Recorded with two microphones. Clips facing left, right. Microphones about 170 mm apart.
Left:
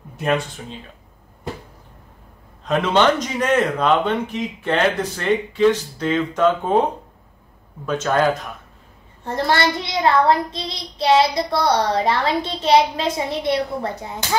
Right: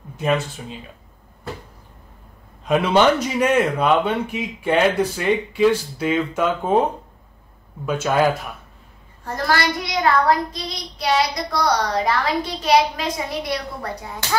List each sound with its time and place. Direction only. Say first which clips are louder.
0.2 s speech: even; centre (ahead or behind)
2.6 s speech: right 1 dB; 10° right (ahead or behind)
7.8 s speech: even; 10° right (ahead or behind)
9.2 s child singing: left 2 dB; 25° left (ahead or behind)